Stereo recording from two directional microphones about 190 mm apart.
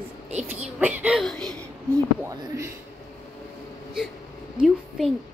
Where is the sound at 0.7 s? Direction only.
5° right (ahead or behind).